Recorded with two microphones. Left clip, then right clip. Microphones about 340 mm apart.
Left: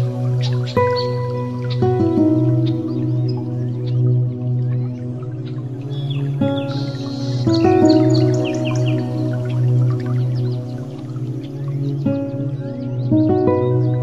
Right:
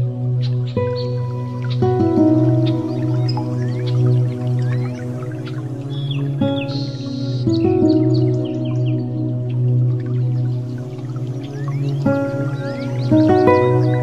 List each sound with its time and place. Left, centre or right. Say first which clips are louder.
0.7 s music: left 5 dB; centre
6.4 s music: even; centre
7.6 s music: left 3 dB; left
13.1 s music: right 3 dB; right